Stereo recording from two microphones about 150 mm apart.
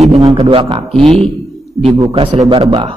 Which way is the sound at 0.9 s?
Centre (ahead or behind).